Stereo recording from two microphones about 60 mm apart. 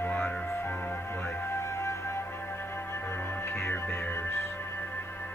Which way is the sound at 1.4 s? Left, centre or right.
Left.